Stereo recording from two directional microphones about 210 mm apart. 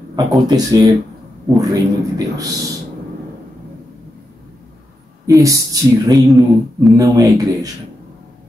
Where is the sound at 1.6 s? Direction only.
15° right (ahead or behind).